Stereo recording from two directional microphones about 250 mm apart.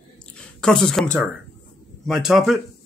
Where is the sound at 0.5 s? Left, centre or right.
Centre.